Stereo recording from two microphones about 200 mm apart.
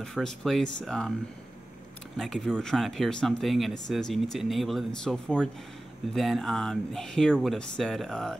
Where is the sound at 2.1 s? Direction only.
Centre (ahead or behind).